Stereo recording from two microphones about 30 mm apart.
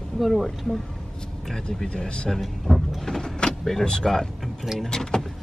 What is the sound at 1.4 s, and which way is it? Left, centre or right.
Speech, centre.